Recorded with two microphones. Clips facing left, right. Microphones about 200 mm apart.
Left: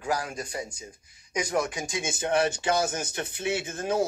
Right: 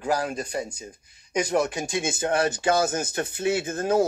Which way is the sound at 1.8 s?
65° right (ahead or behind).